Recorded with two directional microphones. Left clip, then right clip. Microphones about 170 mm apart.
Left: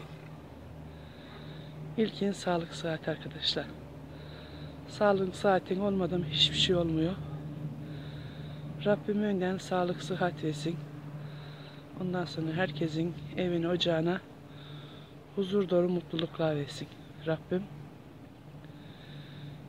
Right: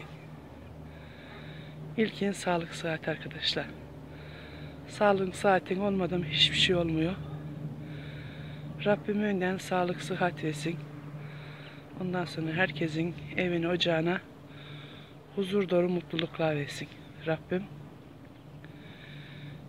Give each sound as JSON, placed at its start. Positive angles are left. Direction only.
{"t": 2.0, "sound": "speech", "side_deg": 0}
{"t": 7.9, "sound": "snort", "side_deg": 0}
{"t": 8.7, "sound": "speech", "side_deg": 0}
{"t": 12.0, "sound": "speech", "side_deg": 0}
{"t": 15.3, "sound": "speech", "side_deg": 0}